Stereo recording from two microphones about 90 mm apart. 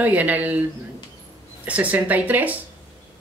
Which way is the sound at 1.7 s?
15° right (ahead or behind).